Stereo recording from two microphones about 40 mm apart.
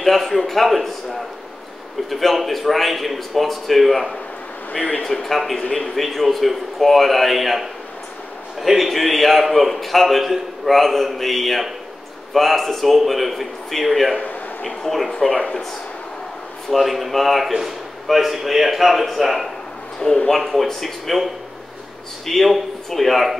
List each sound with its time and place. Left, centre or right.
0.0 s a man's voice: centre
2.0 s a man's voice: centre
5.0 s a man's voice: centre
16.7 s a man's voice: centre